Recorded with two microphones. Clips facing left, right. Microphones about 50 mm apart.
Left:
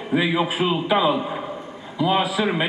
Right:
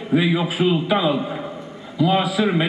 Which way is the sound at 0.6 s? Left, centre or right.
Centre.